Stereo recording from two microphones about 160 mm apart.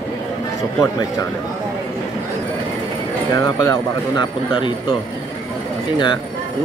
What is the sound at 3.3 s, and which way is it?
Speech, 25° left (ahead or behind).